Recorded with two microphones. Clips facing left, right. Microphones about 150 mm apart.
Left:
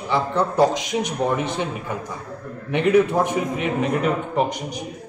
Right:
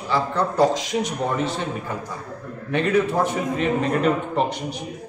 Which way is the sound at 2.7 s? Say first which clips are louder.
Left 3 dB; 15° left (ahead or behind).